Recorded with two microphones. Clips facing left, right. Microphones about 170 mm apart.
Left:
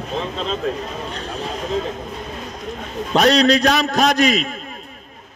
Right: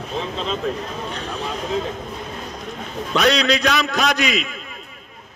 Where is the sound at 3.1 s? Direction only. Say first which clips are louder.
Left 4 dB; 45° left (ahead or behind).